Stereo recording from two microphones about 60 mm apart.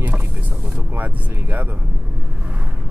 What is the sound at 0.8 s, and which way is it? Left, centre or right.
Speech, right.